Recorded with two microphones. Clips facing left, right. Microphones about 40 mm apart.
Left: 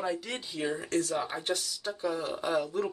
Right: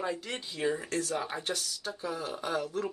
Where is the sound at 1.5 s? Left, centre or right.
Centre.